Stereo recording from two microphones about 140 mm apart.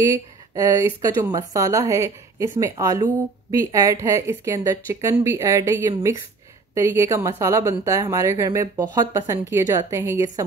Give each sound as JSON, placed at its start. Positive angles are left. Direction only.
{"t": 0.6, "sound": "a woman's voice", "side_deg": -25}